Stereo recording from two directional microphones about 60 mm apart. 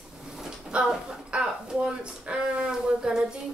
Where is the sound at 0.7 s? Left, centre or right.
Centre.